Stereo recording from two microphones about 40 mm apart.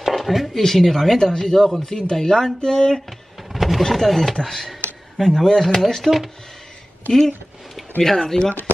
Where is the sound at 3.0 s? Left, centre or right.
Centre.